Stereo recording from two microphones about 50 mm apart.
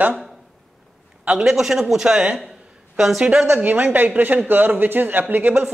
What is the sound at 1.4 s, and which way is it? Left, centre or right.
Speech, centre.